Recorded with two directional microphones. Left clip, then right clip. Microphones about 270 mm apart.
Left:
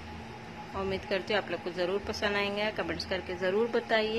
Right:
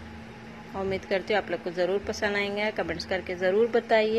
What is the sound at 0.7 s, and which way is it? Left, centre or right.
A woman's voice, centre.